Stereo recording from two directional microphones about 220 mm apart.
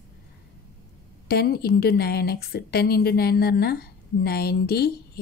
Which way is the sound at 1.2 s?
45° left (ahead or behind).